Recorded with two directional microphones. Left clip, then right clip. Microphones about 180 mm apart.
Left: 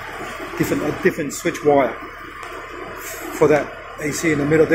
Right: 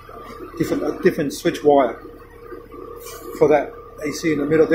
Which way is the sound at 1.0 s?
20° right (ahead or behind).